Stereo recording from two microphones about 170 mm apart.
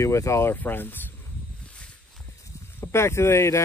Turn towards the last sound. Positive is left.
turn(degrees=15)  # may be behind; listen again after turning